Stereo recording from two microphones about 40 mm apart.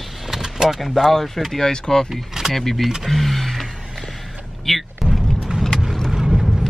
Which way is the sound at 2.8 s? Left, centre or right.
Centre.